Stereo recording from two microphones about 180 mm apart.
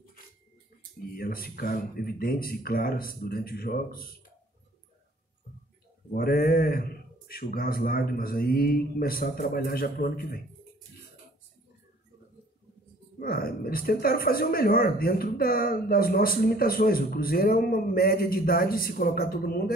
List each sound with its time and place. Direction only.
0.9 s speech: 55° left (ahead or behind)
6.1 s speech: 55° left (ahead or behind)
13.2 s speech: 55° left (ahead or behind)